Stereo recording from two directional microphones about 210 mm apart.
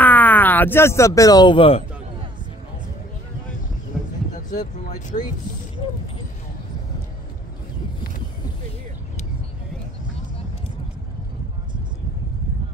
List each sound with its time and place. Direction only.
0.0 s speech: 10° left (ahead or behind); by 1.8 s 25° left (ahead or behind)
4.5 s speech: 35° left (ahead or behind)